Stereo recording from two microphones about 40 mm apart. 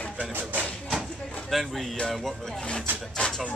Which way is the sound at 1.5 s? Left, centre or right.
Centre.